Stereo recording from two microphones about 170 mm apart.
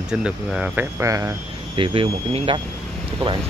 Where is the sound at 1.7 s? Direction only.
30° right (ahead or behind).